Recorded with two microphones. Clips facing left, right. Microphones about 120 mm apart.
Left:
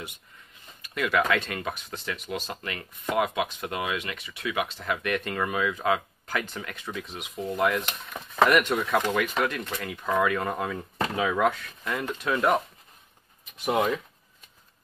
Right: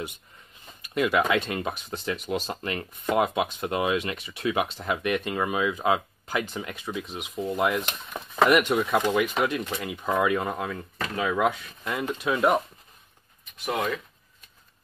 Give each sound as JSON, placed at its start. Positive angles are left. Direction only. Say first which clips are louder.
{"t": 0.9, "sound": "speech", "louder": "right 2 dB", "side_deg": -20}
{"t": 4.7, "sound": "speech", "louder": "right 2 dB", "side_deg": -20}
{"t": 10.6, "sound": "speech", "louder": "left 2 dB", "side_deg": 5}
{"t": 11.4, "sound": "speech", "louder": "even", "side_deg": -15}
{"t": 13.7, "sound": "speech", "louder": "left 3 dB", "side_deg": 15}